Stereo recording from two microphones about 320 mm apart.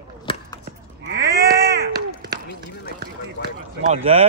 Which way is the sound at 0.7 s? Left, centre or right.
Right.